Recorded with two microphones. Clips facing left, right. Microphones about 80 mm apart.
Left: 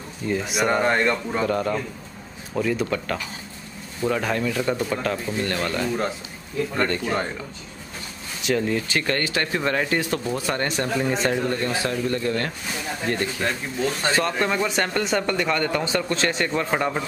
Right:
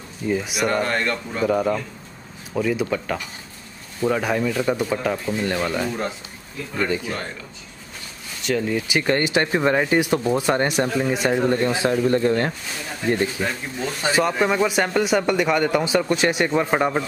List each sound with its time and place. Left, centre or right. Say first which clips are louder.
0.3 s speech: right 1 dB; centre
0.7 s speech: left 2 dB; centre
1.4 s speech: right 6 dB; centre
8.4 s speech: even; centre
11.0 s speech: left 1 dB; centre
11.3 s speech: right 4 dB; right
13.4 s speech: left 1 dB; centre